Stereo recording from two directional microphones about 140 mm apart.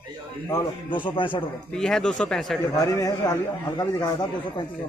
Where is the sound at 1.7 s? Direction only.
5° left (ahead or behind).